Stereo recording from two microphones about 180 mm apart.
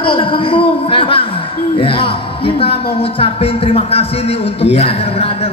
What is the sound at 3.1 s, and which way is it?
A man's voice, 30° left (ahead or behind).